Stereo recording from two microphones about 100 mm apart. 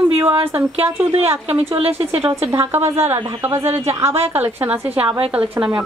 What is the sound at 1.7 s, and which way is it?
Speech, 80° right.